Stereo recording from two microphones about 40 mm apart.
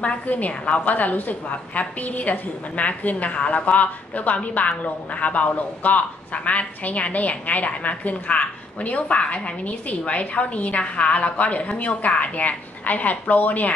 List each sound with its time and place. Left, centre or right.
0.5 s a woman's voice: left